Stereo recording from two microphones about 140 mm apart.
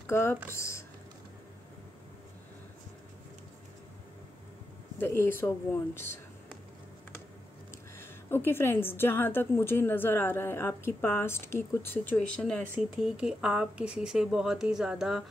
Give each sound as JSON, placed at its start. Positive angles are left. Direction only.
{"t": 0.0, "sound": "speech", "side_deg": 20}
{"t": 4.9, "sound": "speech", "side_deg": 15}
{"t": 8.0, "sound": "a woman's voice", "side_deg": 15}
{"t": 13.0, "sound": "speech", "side_deg": -5}